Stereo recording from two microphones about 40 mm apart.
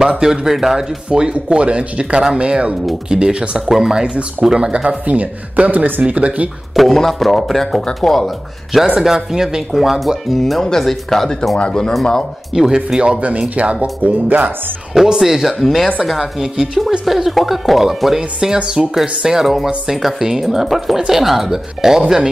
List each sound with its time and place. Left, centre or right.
0.0 s speech: centre
1.1 s speech: right
4.0 s speech: right
4.8 s speech: right
6.7 s speech: centre
9.0 s speech: centre
11.5 s speech: left
11.9 s speech: centre
12.5 s speech: centre
13.4 s speech: right
15.1 s speech: centre
16.2 s speech: centre
17.0 s speech: centre